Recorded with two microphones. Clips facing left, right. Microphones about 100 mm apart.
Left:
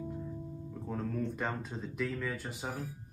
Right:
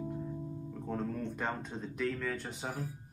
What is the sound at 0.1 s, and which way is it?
Music, 5° right (ahead or behind).